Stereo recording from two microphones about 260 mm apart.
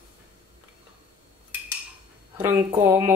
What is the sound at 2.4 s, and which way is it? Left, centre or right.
Speech, centre.